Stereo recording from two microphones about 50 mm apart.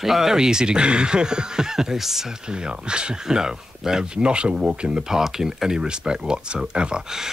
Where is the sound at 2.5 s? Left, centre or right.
Centre.